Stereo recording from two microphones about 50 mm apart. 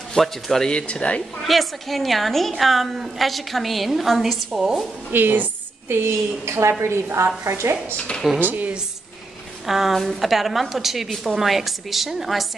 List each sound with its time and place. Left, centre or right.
0.1 s speech: centre
0.7 s speech: centre
1.4 s a woman's voice: centre
4.5 s a woman's voice: centre
5.1 s a woman's voice: right
5.9 s a woman's voice: right
8.4 s a woman's voice: right
9.7 s a woman's voice: centre